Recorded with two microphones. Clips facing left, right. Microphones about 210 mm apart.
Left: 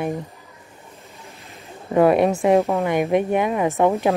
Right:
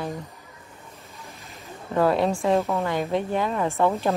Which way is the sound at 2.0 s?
20° left (ahead or behind).